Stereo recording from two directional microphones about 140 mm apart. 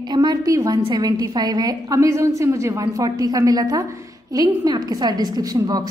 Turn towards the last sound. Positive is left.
turn(degrees=-30)  # may be behind; listen again after turning